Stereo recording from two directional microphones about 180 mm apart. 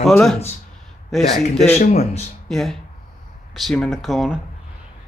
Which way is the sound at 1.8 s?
35° left (ahead or behind).